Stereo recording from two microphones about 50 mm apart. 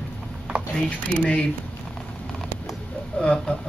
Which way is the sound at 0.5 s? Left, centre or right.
Centre.